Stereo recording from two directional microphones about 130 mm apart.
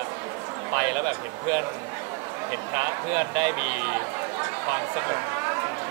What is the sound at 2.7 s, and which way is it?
Speech, 20° right (ahead or behind).